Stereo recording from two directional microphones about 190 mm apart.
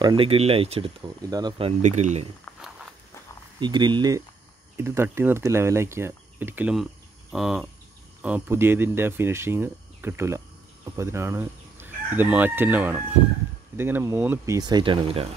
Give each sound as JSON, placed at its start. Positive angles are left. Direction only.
{"t": 0.0, "sound": "speech", "side_deg": -25}
{"t": 3.5, "sound": "speech", "side_deg": -25}
{"t": 7.3, "sound": "cricket", "side_deg": 0}
{"t": 8.2, "sound": "speech", "side_deg": -10}
{"t": 11.0, "sound": "crowing", "side_deg": -15}
{"t": 13.7, "sound": "speech", "side_deg": -10}